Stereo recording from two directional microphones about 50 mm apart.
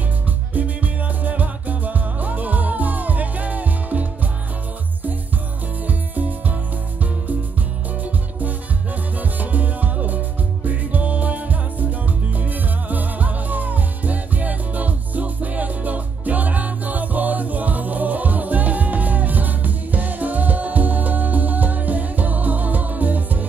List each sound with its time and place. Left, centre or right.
0.6 s music: right
5.9 s music: right
8.0 s music: right